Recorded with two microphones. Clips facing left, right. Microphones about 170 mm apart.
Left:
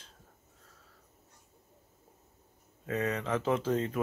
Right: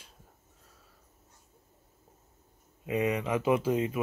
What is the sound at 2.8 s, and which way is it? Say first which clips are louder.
Speech: right 3 dB; 10° right (ahead or behind).